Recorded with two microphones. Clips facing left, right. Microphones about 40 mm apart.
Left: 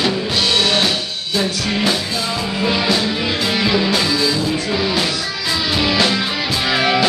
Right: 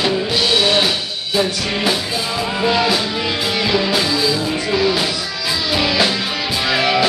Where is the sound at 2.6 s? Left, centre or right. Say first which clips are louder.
Right 1 dB; centre.